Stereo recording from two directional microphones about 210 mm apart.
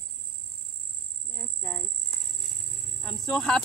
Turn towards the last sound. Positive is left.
turn(degrees=5)  # may be behind; listen again after turning